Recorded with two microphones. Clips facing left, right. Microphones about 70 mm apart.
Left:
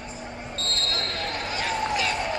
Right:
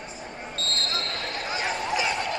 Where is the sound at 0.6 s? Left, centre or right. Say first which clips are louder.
Even; left.